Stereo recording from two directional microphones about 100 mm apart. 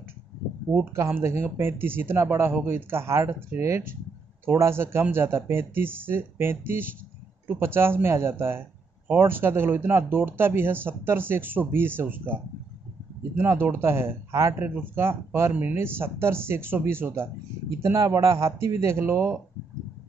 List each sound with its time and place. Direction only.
0.9 s speech: 25° right (ahead or behind)
13.4 s speech: 20° right (ahead or behind)